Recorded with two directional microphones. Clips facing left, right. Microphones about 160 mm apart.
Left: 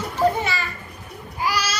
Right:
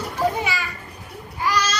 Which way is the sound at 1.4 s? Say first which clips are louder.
Right 2 dB; 10° left (ahead or behind).